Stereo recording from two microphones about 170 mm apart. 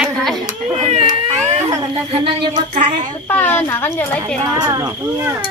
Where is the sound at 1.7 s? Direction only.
20° right (ahead or behind).